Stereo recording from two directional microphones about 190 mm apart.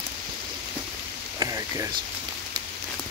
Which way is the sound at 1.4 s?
20° right (ahead or behind).